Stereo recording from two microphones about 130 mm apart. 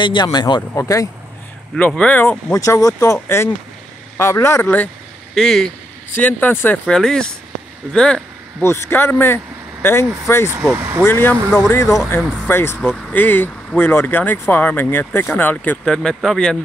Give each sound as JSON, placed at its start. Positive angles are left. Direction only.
{"t": 0.0, "sound": "speech", "side_deg": 35}
{"t": 0.6, "sound": "speech", "side_deg": 20}
{"t": 1.8, "sound": "speech", "side_deg": 10}
{"t": 2.5, "sound": "speech", "side_deg": 25}
{"t": 5.3, "sound": "speech", "side_deg": 5}
{"t": 6.1, "sound": "speech", "side_deg": 15}
{"t": 8.6, "sound": "speech", "side_deg": 20}
{"t": 10.5, "sound": "speech", "side_deg": -20}
{"t": 11.0, "sound": "speech", "side_deg": 15}